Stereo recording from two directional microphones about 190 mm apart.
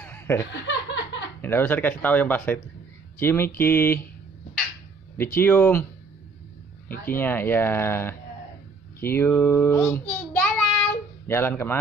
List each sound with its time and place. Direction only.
0.0 s chuckle: 10° left (ahead or behind)
0.5 s chuckle: 70° left (ahead or behind)
1.4 s speech: 10° left (ahead or behind)
5.1 s speech: 10° left (ahead or behind)
7.1 s speech: 10° left (ahead or behind)
9.0 s child singing: 10° left (ahead or behind)